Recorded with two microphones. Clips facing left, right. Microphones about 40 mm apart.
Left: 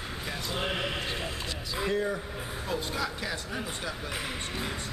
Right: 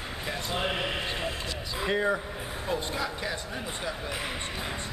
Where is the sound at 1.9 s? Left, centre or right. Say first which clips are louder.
Right 4 dB; right.